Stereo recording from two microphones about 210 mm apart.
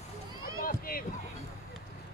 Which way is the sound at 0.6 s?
45° left (ahead or behind).